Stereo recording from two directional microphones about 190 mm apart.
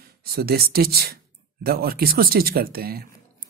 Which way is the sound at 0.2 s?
55° right (ahead or behind).